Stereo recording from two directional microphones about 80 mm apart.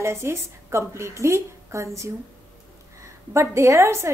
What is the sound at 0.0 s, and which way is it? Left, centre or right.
A woman's voice, right.